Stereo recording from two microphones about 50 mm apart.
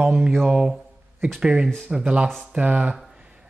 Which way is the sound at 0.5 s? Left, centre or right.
Centre.